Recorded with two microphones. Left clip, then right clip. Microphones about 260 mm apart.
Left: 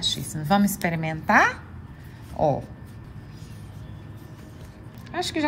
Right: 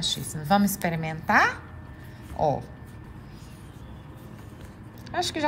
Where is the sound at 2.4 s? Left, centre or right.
Centre.